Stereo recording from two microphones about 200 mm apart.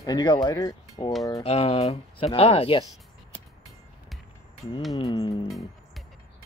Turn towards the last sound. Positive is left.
turn(degrees=20)  # may be behind; listen again after turning